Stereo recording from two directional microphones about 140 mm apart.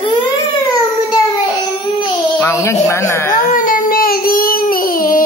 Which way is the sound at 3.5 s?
75° left (ahead or behind).